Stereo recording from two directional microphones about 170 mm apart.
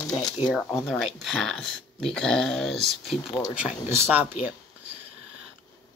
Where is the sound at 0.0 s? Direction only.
20° left (ahead or behind).